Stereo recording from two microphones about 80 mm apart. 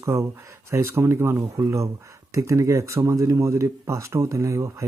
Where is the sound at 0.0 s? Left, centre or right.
Right.